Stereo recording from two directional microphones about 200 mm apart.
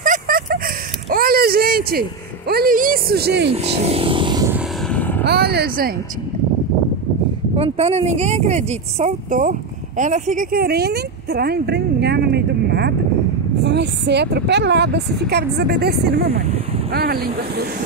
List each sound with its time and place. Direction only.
0.0 s a sound: 45° right (ahead or behind)
1.1 s speech: 50° right (ahead or behind)
3.5 s speech: 30° right (ahead or behind)
4.8 s vehicle: 10° left (ahead or behind)
5.2 s speech: 55° right (ahead or behind)
7.5 s a woman's voice: 30° right (ahead or behind); by 17.3 s 50° right (ahead or behind)